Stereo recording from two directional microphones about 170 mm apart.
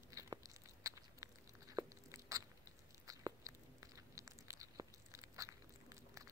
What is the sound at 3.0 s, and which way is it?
Biting, 20° right (ahead or behind).